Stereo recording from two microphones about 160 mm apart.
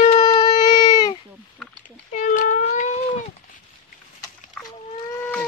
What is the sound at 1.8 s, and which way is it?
Cat, 55° left (ahead or behind).